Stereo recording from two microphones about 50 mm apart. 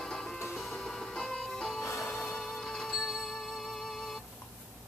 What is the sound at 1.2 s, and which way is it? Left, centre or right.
Music, centre.